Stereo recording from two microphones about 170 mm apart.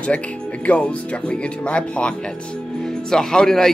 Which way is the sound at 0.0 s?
10° left (ahead or behind).